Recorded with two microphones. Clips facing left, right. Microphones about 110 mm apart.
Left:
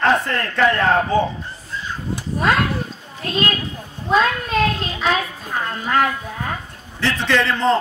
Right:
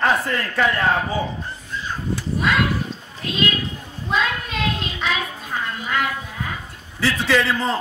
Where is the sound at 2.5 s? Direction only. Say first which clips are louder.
Left 2 dB; 40° left (ahead or behind).